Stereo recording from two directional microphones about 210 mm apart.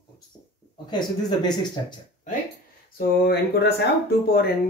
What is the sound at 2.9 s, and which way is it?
Speech, 45° left (ahead or behind).